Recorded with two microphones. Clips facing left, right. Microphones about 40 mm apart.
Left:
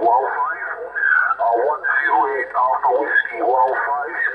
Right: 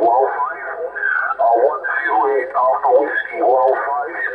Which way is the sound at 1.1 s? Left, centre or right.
Centre.